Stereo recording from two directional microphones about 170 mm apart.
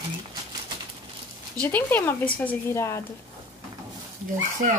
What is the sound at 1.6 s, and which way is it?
A woman's voice, 10° left (ahead or behind).